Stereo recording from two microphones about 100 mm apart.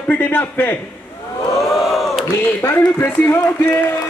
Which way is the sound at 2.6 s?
20° left (ahead or behind).